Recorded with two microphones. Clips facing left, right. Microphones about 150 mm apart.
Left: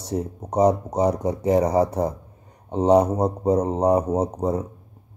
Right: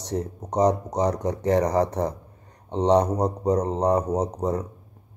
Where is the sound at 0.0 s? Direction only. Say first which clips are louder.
Left 2 dB; 10° left (ahead or behind).